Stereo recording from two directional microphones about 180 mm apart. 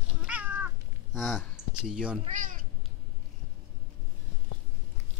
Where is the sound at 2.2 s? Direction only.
45° right (ahead or behind).